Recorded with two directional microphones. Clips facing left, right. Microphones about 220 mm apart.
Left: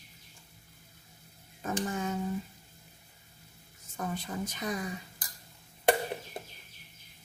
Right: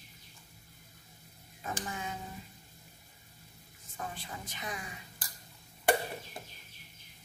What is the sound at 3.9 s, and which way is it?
Speech, 45° left (ahead or behind).